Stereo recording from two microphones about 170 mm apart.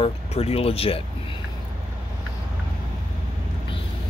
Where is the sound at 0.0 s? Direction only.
35° left (ahead or behind).